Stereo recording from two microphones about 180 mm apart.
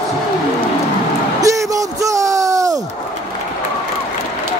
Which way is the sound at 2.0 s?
20° right (ahead or behind).